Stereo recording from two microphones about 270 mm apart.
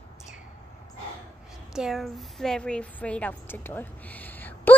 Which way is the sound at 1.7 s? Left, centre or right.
Centre.